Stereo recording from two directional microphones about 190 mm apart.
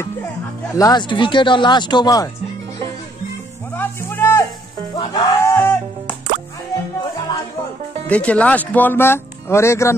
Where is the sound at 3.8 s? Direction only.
10° left (ahead or behind).